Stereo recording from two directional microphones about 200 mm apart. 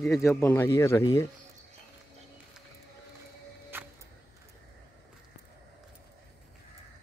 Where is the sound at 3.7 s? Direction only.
10° right (ahead or behind).